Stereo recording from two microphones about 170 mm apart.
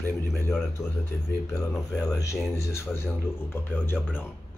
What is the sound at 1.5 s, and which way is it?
Speech, 15° left (ahead or behind).